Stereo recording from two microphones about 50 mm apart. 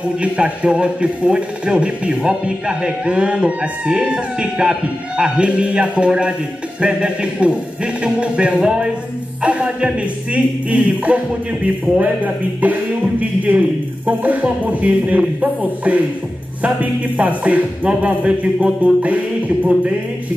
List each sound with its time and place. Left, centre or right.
0.2 s speech: right